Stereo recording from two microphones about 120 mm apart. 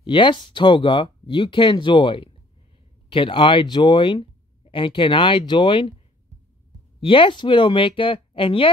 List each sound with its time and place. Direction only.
0.0 s speech: 45° left (ahead or behind)
7.0 s speech: 45° left (ahead or behind)